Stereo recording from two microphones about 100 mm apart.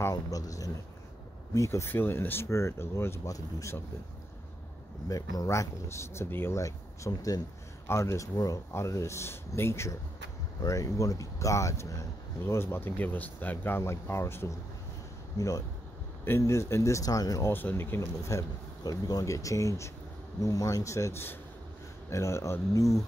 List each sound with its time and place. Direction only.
0.1 s speech: 35° left (ahead or behind)
5.0 s speech: 35° left (ahead or behind)
17.5 s speech: 20° left (ahead or behind)
18.9 s speech: 35° left (ahead or behind)